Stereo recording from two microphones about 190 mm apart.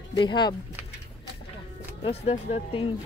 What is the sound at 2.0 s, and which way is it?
Speech, 30° left (ahead or behind).